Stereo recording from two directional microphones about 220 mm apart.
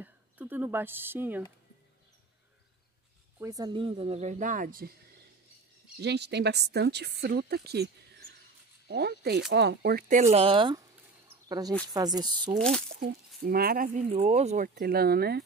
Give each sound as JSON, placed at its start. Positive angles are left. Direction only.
{"t": 0.0, "sound": "speech", "side_deg": -10}
{"t": 3.3, "sound": "speech", "side_deg": -15}
{"t": 5.9, "sound": "a woman's voice", "side_deg": -50}
{"t": 12.5, "sound": "speech", "side_deg": 5}
{"t": 12.9, "sound": "a woman's voice", "side_deg": -45}
{"t": 14.0, "sound": "speech", "side_deg": -30}
{"t": 14.8, "sound": "a woman's voice", "side_deg": -45}